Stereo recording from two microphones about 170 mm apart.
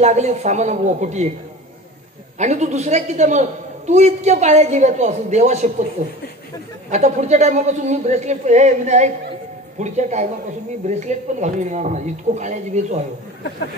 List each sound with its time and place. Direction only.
0.0 s a man's voice: 45° right (ahead or behind)
2.3 s a man's voice: 45° right (ahead or behind)
6.9 s a man's voice: 40° right (ahead or behind)